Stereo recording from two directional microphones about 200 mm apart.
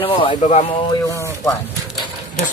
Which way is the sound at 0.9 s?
15° left (ahead or behind).